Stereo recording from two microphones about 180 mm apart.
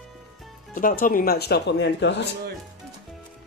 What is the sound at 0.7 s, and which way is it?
Speech, 50° left (ahead or behind).